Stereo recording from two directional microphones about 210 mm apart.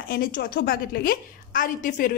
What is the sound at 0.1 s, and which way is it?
A woman's voice, 45° left (ahead or behind).